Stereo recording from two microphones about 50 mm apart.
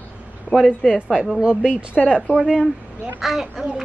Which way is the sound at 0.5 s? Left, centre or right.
Left.